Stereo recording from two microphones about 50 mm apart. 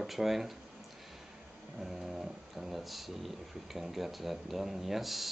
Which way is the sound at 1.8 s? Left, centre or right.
Centre.